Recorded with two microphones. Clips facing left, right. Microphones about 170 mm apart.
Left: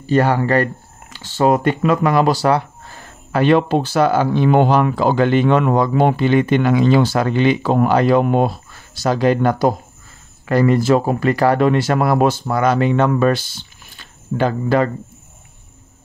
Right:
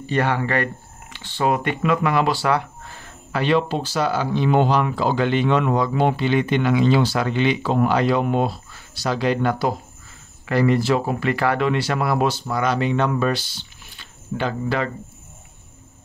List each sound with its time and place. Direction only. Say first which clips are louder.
0.0 s speech: left 6 dB; 40° left (ahead or behind)
3.3 s speech: left 6 dB; 50° left (ahead or behind)